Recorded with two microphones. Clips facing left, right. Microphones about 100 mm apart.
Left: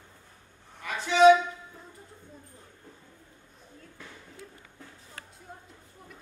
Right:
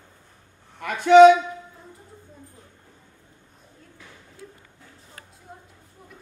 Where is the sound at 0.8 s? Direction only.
60° right (ahead or behind).